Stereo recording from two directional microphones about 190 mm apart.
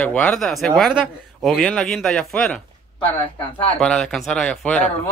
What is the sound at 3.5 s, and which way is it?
Speech, 30° left (ahead or behind).